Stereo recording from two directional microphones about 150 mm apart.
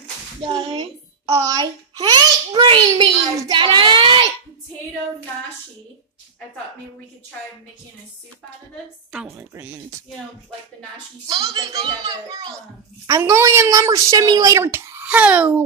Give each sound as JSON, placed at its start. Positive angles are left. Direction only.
{"t": 0.4, "sound": "a child's voice", "side_deg": -30}
{"t": 9.1, "sound": "speech", "side_deg": -5}
{"t": 11.2, "sound": "a child's voice", "side_deg": -25}